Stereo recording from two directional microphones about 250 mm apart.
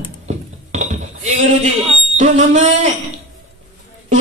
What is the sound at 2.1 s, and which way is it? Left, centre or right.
Speech, right.